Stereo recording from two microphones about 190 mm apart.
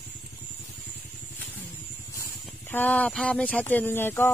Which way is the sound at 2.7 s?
10° left (ahead or behind).